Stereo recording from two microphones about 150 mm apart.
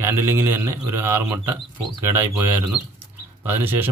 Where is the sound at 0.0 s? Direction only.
15° right (ahead or behind).